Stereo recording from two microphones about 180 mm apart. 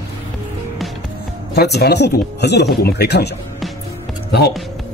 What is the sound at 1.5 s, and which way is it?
Speech, 65° left (ahead or behind).